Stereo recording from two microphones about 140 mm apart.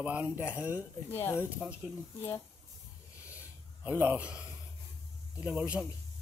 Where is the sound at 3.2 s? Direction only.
10° right (ahead or behind).